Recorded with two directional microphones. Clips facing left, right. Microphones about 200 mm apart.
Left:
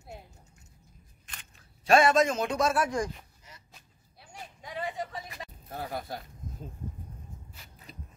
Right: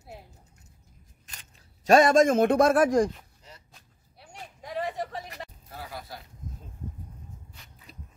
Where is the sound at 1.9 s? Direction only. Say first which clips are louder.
Right 4 dB; 45° right (ahead or behind).